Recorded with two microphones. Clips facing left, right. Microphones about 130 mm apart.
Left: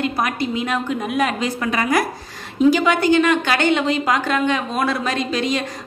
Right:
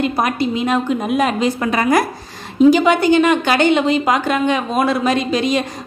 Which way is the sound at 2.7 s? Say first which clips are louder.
Right 3 dB; 20° right (ahead or behind).